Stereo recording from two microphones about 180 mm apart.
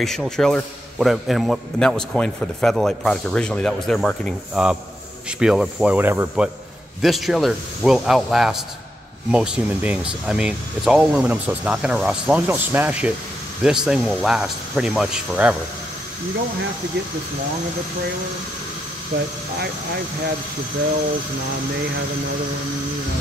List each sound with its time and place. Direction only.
0.0 s a man's voice: centre (ahead or behind)
19.1 s speech: 60° right (ahead or behind)